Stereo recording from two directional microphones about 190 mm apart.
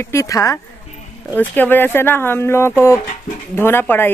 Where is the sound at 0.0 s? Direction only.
15° left (ahead or behind).